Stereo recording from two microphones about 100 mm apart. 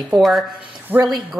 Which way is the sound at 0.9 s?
20° right (ahead or behind).